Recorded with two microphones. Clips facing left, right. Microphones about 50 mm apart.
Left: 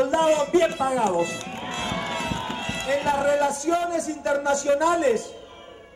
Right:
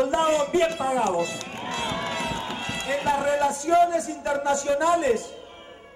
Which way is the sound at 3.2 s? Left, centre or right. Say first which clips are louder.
Left 2 dB; centre.